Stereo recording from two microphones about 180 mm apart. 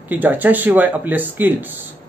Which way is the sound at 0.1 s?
10° right (ahead or behind).